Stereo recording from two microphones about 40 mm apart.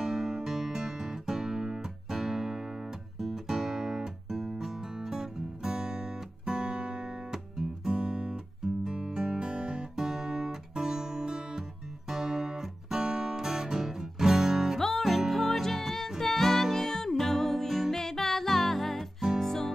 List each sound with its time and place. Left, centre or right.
0.0 s music: centre
8.8 s guitar: centre
12.1 s music: centre
14.8 s music: centre